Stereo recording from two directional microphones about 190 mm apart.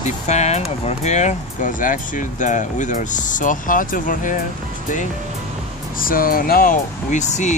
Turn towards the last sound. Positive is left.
turn(degrees=40)  # may be behind; listen again after turning